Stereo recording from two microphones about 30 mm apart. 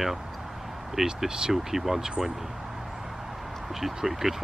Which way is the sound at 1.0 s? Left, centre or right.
Right.